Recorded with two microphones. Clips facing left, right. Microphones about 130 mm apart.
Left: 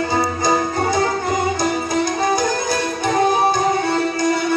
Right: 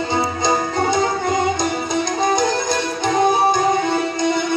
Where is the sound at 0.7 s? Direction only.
20° right (ahead or behind).